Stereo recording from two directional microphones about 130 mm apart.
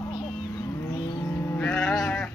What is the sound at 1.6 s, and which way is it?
Sheep, 10° left (ahead or behind).